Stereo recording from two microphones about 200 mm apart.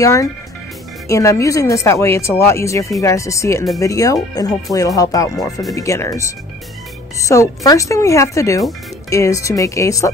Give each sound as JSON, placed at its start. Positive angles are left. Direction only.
{"t": 0.0, "sound": "speech", "side_deg": 15}